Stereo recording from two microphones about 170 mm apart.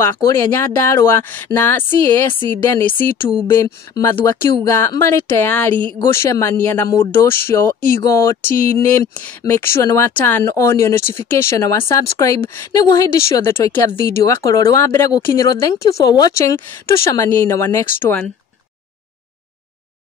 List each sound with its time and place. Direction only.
0.0 s speech: 15° left (ahead or behind)
3.4 s speech: 15° left (ahead or behind)